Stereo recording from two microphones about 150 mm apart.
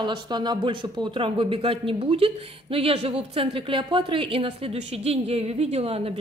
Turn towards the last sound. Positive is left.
turn(degrees=-40)  # may be behind; listen again after turning